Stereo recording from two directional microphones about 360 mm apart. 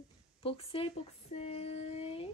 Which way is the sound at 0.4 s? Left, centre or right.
Centre.